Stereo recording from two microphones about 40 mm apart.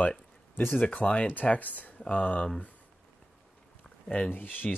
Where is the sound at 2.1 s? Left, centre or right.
Left.